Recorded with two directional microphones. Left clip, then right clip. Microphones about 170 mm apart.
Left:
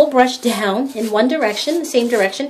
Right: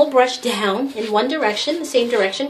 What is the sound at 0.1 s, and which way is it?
Speech, 50° left (ahead or behind).